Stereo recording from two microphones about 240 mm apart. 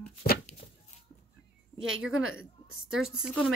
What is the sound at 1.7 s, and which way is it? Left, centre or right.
Speech, right.